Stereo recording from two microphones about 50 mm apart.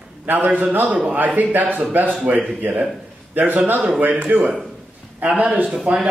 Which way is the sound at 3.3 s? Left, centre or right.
Right.